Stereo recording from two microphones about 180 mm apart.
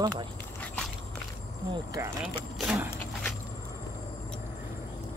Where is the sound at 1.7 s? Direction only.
20° right (ahead or behind).